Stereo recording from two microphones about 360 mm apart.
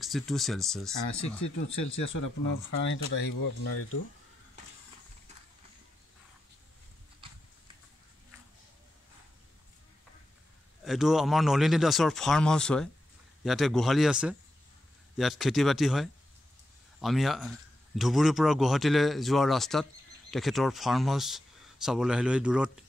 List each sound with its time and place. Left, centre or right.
0.0 s a man's voice: centre
2.1 s speech: left
10.8 s a man's voice: centre